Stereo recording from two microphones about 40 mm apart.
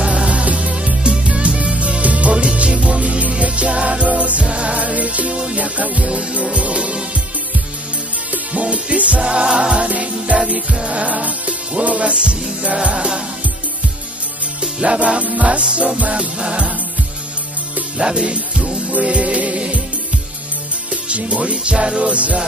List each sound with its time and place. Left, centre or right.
0.0 s music: centre
0.3 s music: right
8.3 s music: right
9.2 s music: right
9.8 s music: right
14.6 s music: right
15.0 s music: right
17.9 s music: centre
19.0 s music: right
20.9 s music: right
21.7 s music: centre
22.0 s music: right